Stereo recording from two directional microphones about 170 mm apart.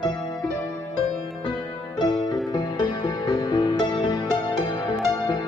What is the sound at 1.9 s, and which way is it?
Music, 25° left (ahead or behind).